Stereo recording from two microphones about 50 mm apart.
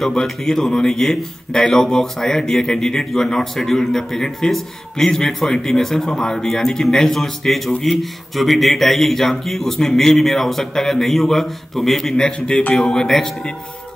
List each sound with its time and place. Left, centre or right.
0.0 s a man's voice: centre